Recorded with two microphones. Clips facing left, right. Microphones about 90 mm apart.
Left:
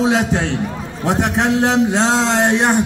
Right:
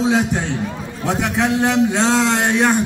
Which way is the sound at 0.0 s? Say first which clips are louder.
Left 1 dB; 70° left (ahead or behind).